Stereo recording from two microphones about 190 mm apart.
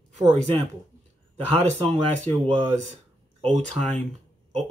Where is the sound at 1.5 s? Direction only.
35° right (ahead or behind).